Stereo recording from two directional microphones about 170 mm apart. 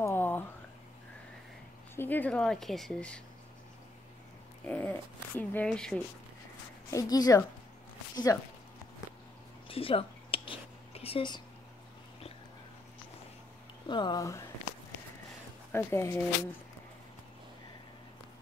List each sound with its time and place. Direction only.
0.0 s a sound: 10° left (ahead or behind)
2.0 s speech: 10° left (ahead or behind)
4.6 s speech: 10° left (ahead or behind)
6.9 s a woman's voice: 20° left (ahead or behind)
9.7 s a sound: 35° left (ahead or behind)
13.8 s a woman's voice: 25° left (ahead or behind)
15.7 s speech: 15° left (ahead or behind)